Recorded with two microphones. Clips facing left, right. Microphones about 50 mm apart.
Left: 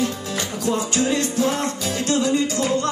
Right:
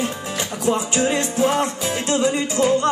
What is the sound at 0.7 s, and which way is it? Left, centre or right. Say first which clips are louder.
Music: right 2 dB; right.